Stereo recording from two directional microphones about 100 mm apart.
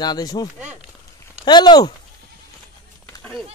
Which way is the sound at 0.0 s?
45° left (ahead or behind).